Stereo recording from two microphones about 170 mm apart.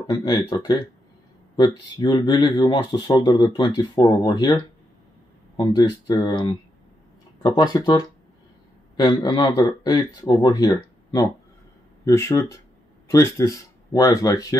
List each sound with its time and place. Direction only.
0.0 s speech: 25° left (ahead or behind)
5.6 s speech: 25° left (ahead or behind)